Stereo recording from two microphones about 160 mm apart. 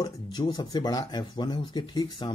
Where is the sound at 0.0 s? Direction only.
25° left (ahead or behind).